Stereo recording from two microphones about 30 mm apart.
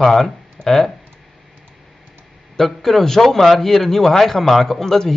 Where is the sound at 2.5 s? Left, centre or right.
Centre.